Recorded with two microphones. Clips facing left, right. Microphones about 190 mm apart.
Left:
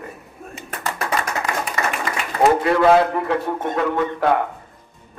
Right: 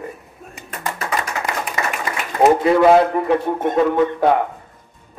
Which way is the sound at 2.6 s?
15° right (ahead or behind).